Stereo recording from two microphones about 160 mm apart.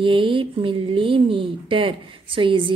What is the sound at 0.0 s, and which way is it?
Speech, 30° right (ahead or behind).